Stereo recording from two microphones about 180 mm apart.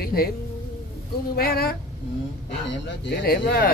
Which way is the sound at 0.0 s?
55° left (ahead or behind).